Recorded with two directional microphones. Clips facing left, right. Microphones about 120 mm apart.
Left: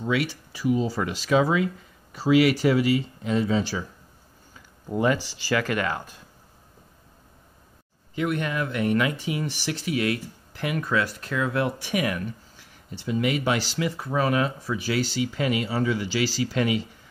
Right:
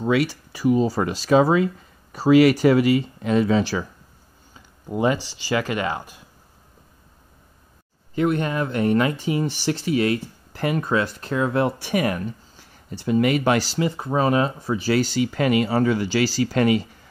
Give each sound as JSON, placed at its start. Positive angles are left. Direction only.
{"t": 0.0, "sound": "speech", "side_deg": -45}
{"t": 4.9, "sound": "speech", "side_deg": -20}
{"t": 8.1, "sound": "speech", "side_deg": -35}
{"t": 13.7, "sound": "speech", "side_deg": -30}
{"t": 15.0, "sound": "speech", "side_deg": -50}